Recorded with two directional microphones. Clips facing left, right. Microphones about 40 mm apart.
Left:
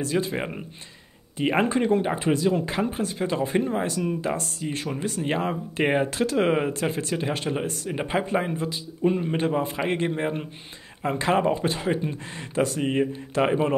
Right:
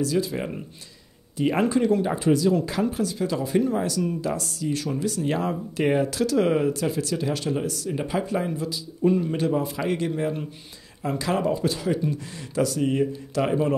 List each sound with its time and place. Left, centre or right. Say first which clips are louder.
0.0 s speech: right 1 dB; left